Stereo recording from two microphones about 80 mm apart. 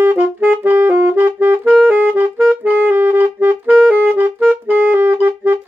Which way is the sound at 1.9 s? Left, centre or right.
Centre.